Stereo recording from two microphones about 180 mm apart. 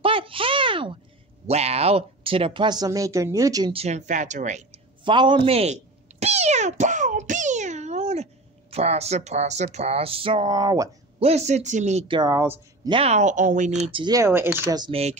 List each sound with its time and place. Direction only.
0.0 s a sound: 30° right (ahead or behind)
1.5 s speech: 35° right (ahead or behind); by 3.7 s 20° right (ahead or behind)
3.7 s speech: 35° right (ahead or behind)
5.0 s speech: 25° right (ahead or behind)
11.2 s speech: 40° right (ahead or behind)
12.2 s speech: 20° right (ahead or behind)
12.9 s speech: 35° right (ahead or behind)
13.8 s speech: 25° right (ahead or behind)
14.8 s speech: 35° right (ahead or behind)